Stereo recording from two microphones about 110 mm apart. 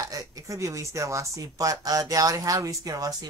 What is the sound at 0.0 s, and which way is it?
Speech, 35° right (ahead or behind).